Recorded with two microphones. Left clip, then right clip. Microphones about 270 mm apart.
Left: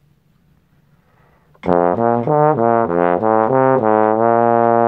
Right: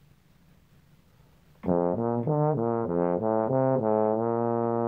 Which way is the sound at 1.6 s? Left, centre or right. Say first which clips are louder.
Left 12 dB; left.